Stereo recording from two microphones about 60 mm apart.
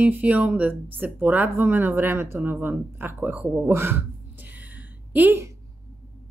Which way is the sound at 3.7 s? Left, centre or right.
Right.